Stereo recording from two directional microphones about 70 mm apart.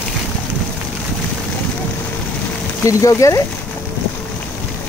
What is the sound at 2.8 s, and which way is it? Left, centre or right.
Speech, left.